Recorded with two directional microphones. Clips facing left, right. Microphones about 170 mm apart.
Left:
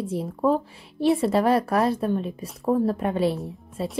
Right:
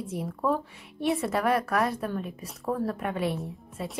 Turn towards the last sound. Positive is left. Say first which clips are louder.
# left 5 dB
turn(degrees=30)  # may be behind; listen again after turning